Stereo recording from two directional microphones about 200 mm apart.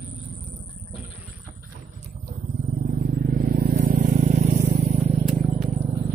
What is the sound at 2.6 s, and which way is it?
Vehicle, 45° right (ahead or behind).